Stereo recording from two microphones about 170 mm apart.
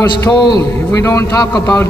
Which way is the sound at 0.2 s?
25° left (ahead or behind).